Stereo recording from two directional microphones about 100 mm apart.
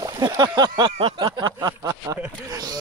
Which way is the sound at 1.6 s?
35° right (ahead or behind).